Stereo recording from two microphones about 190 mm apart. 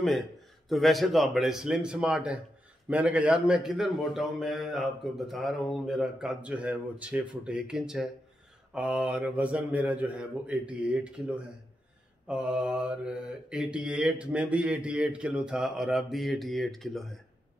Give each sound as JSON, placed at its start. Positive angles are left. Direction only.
{"t": 0.7, "sound": "a man's voice", "side_deg": 0}